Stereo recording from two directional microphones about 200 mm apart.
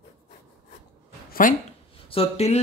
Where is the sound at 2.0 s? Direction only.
30° left (ahead or behind).